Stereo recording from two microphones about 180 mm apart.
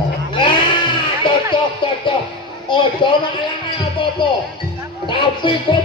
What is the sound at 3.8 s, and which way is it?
Music, 25° left (ahead or behind).